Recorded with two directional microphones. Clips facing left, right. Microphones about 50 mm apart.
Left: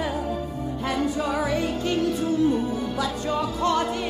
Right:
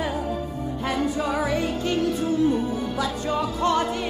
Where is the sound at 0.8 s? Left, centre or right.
Right.